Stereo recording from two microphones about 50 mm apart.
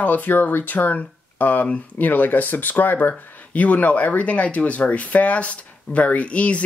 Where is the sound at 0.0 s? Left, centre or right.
Left.